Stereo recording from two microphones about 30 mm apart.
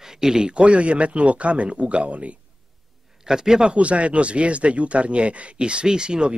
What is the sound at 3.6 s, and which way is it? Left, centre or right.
Speech, right.